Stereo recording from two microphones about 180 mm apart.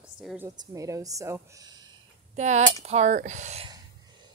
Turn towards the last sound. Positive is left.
turn(degrees=-40)  # may be behind; listen again after turning